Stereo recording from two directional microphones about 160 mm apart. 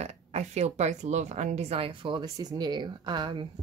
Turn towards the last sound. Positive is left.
turn(degrees=-30)  # may be behind; listen again after turning